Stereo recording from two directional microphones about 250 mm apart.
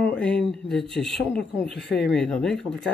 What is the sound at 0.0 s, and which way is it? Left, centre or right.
Speech, centre.